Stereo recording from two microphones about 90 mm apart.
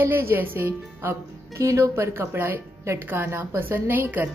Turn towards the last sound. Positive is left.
turn(degrees=-25)  # may be behind; listen again after turning